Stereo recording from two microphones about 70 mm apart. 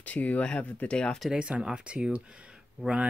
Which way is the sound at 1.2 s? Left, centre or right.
Centre.